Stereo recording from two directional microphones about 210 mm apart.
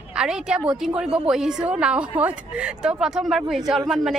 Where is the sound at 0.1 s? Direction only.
5° right (ahead or behind).